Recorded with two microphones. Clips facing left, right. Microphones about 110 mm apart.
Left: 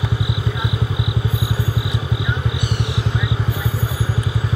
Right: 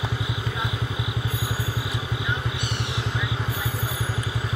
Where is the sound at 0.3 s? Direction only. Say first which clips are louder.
Left 5 dB; 15° left (ahead or behind).